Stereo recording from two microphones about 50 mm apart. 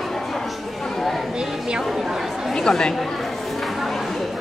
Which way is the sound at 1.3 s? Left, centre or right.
Centre.